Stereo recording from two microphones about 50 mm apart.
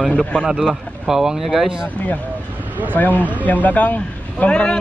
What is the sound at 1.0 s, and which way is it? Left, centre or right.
Speech, centre.